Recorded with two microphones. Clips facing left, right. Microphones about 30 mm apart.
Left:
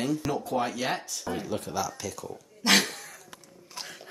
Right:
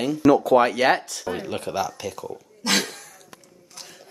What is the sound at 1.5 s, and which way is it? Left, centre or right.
Speech, right.